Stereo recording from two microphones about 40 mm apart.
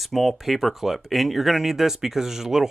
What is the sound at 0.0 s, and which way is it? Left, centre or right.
Speech, centre.